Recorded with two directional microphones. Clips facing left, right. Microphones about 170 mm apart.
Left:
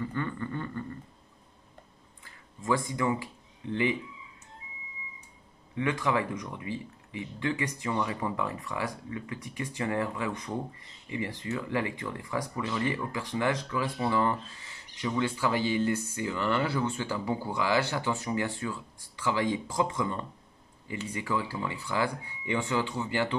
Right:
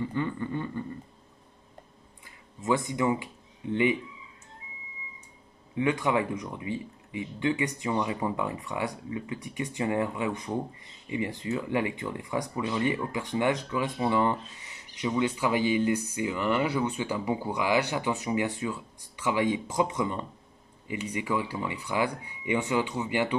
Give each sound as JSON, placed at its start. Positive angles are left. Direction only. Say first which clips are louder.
{"t": 0.0, "sound": "speech", "louder": "right 3 dB", "side_deg": -15}
{"t": 2.2, "sound": "speech", "louder": "right 2 dB", "side_deg": -20}
{"t": 5.8, "sound": "speech", "louder": "right 2 dB", "side_deg": -25}